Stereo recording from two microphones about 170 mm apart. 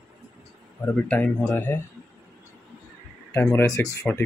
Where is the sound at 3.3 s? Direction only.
15° left (ahead or behind).